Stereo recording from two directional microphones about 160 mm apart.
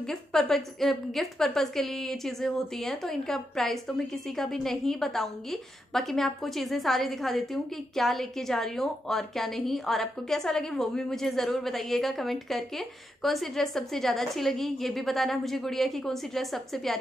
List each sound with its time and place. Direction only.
0.0 s a woman's voice: 5° left (ahead or behind)